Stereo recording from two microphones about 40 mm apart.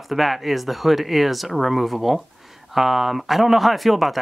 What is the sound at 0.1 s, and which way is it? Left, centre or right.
Speech, centre.